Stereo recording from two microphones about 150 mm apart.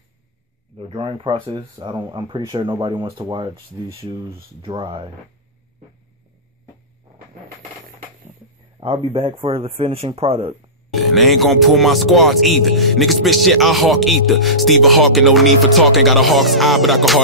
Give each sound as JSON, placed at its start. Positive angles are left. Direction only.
{"t": 0.7, "sound": "a man's voice", "side_deg": -35}
{"t": 4.6, "sound": "a man's voice", "side_deg": -35}
{"t": 8.7, "sound": "a man's voice", "side_deg": -35}
{"t": 11.1, "sound": "speech", "side_deg": 0}